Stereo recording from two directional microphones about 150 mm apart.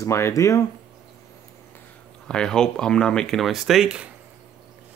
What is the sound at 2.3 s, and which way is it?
Speech, 5° left (ahead or behind).